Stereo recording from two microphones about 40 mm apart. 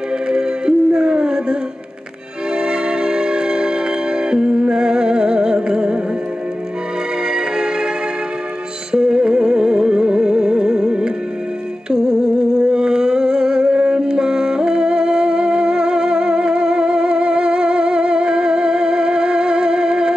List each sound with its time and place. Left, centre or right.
0.3 s music: centre
7.2 s music: centre
8.9 s music: centre
11.9 s humming: centre